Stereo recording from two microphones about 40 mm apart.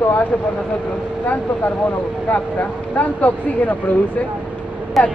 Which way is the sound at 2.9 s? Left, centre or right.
Left.